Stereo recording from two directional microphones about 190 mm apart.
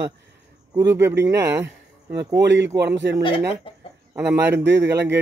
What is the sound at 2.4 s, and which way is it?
Speech, 65° right (ahead or behind).